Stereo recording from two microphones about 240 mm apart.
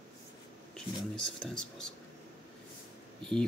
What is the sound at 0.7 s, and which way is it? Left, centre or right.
Speech, centre.